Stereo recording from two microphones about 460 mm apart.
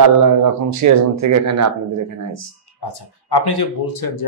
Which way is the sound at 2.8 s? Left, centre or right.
Left.